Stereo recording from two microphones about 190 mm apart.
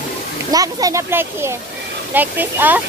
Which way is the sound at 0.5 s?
20° right (ahead or behind).